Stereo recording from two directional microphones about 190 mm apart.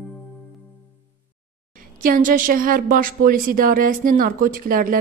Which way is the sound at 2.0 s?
50° right (ahead or behind).